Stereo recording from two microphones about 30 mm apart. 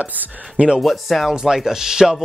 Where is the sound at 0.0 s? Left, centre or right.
Right.